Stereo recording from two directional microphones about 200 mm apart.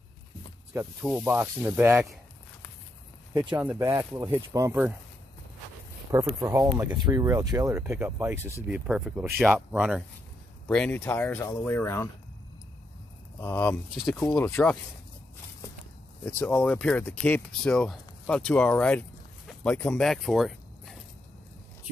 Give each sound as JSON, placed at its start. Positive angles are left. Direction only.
{"t": 1.0, "sound": "speech", "side_deg": -5}
{"t": 3.5, "sound": "speech", "side_deg": -10}
{"t": 6.1, "sound": "speech", "side_deg": -15}
{"t": 13.4, "sound": "speech", "side_deg": 10}
{"t": 14.2, "sound": "speech", "side_deg": 15}
{"t": 16.3, "sound": "speech", "side_deg": 10}